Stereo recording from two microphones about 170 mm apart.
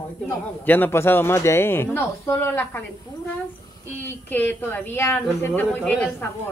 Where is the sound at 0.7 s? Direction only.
10° left (ahead or behind).